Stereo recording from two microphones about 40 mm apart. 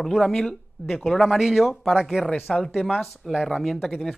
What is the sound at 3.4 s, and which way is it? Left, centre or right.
Speech, centre.